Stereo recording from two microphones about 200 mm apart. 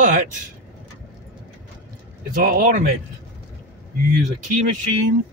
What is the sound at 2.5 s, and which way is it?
Speech, 45° right (ahead or behind).